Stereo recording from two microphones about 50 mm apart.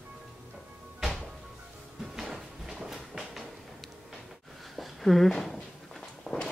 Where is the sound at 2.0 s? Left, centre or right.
Centre.